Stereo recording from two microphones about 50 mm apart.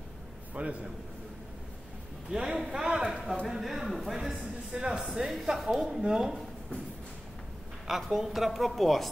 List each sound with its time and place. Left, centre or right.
0.6 s a man's voice: right
2.3 s speech: centre
7.8 s a woman's voice: centre